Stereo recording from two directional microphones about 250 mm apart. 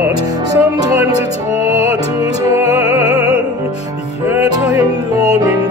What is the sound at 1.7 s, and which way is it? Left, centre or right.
Music, left.